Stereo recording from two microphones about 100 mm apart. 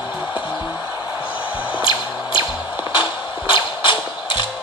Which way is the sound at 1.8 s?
55° left (ahead or behind).